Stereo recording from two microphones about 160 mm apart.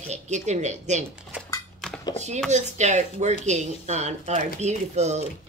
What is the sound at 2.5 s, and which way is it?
Speech, 45° right (ahead or behind).